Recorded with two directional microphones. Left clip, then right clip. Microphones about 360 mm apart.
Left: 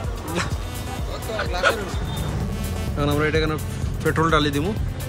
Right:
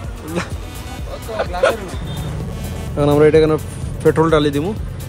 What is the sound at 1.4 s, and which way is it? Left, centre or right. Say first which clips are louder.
Speech: right 7 dB; centre.